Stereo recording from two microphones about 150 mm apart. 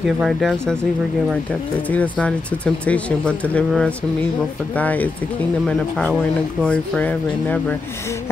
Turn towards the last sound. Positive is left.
turn(degrees=10)  # may be behind; listen again after turning